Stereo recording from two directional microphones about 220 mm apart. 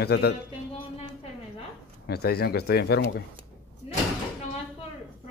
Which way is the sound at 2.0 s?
45° left (ahead or behind).